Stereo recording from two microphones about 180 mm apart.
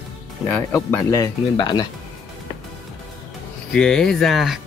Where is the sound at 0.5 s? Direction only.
15° left (ahead or behind).